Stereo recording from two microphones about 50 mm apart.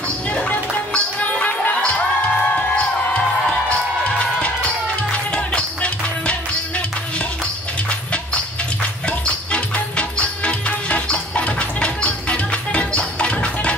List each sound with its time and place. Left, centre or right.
0.3 s music: left
3.4 s music: centre
4.2 s music: left
9.2 s music: left